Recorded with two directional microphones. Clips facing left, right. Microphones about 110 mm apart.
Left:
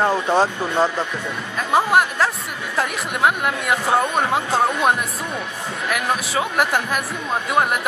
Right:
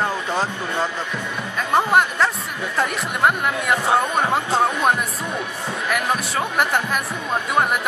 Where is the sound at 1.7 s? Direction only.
5° left (ahead or behind).